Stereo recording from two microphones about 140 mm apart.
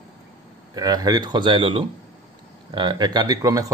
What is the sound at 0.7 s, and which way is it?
Speech, 25° right (ahead or behind).